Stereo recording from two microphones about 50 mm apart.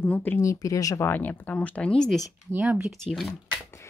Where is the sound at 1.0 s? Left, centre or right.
Left.